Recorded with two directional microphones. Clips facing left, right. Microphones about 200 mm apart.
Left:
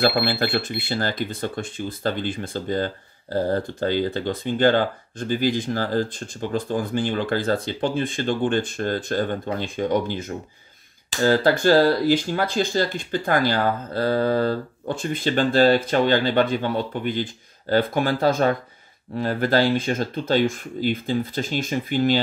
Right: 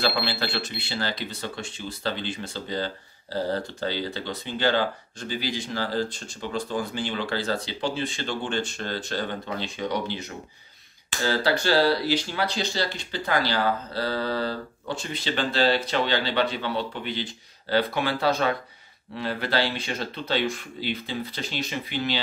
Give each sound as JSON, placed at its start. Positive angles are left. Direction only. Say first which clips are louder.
{"t": 0.0, "sound": "speech", "louder": "left 6 dB", "side_deg": 55}